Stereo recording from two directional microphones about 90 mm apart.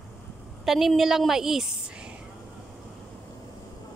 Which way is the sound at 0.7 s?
Centre (ahead or behind).